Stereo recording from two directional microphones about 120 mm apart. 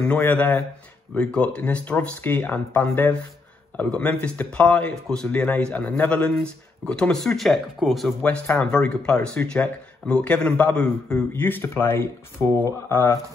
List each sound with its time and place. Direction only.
0.2 s speech: 15° left (ahead or behind)
12.4 s speech: 20° right (ahead or behind)